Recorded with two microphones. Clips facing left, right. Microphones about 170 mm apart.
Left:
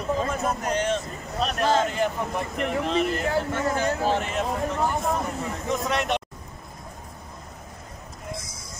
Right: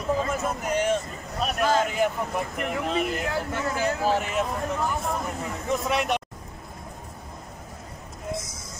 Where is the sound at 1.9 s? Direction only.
5° right (ahead or behind).